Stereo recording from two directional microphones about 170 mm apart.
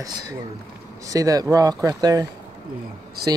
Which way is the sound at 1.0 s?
20° right (ahead or behind).